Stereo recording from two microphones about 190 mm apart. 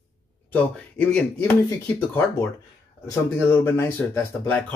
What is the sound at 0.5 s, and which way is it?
Speech, 10° left (ahead or behind).